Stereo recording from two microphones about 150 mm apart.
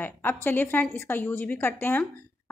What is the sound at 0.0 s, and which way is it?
A woman's voice, 15° left (ahead or behind).